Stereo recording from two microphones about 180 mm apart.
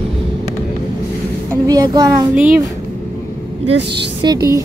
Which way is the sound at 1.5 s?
20° right (ahead or behind).